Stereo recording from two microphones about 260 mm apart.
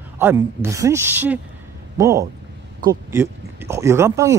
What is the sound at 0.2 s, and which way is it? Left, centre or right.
Speech, centre.